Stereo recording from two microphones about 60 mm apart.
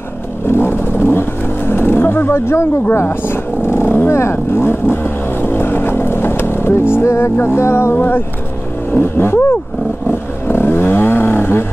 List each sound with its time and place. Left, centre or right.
0.5 s vehicle: left
1.0 s speech: left
8.9 s vehicle: left
10.5 s a sound: left